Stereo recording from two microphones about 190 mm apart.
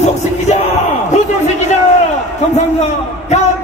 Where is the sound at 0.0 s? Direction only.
35° left (ahead or behind).